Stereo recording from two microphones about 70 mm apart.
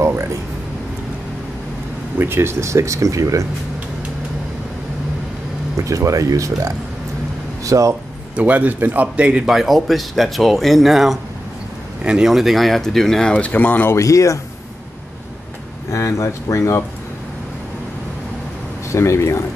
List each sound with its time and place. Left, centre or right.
0.0 s a sound: right
2.1 s speech: right
5.8 s speech: right
8.4 s speech: right
9.5 s speech: centre
13.5 s speech: left
13.9 s speech: left
15.9 s speech: left
18.9 s speech: left